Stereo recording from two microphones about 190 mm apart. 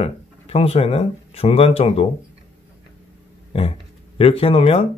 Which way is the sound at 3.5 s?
30° left (ahead or behind).